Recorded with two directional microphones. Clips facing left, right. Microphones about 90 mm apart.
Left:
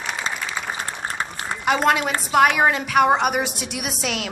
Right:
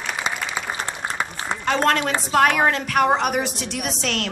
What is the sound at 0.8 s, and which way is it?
Applause, 20° right (ahead or behind).